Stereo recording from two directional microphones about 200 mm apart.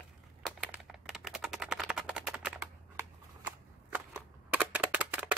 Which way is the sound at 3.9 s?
10° right (ahead or behind).